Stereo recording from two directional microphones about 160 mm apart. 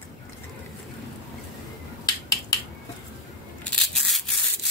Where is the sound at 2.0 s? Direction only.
25° left (ahead or behind).